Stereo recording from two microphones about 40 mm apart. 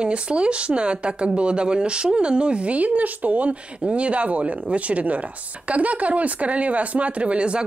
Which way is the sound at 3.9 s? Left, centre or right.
Right.